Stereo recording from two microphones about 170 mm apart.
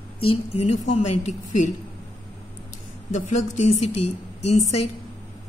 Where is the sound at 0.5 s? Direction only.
40° left (ahead or behind).